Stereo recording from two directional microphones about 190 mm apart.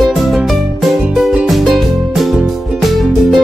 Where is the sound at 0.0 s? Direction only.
Centre (ahead or behind).